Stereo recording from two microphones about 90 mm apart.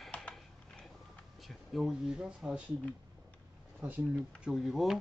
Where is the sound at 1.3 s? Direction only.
Centre (ahead or behind).